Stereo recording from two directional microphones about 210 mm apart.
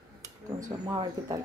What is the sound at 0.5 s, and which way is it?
Speech, 15° right (ahead or behind).